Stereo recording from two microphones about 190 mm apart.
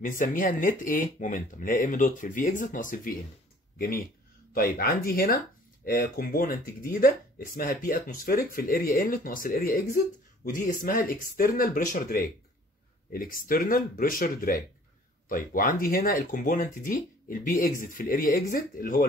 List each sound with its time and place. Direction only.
0.0 s speech: 45° left (ahead or behind)